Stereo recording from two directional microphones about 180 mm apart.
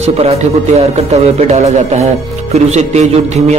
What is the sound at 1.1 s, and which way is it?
A man's voice, 40° right (ahead or behind).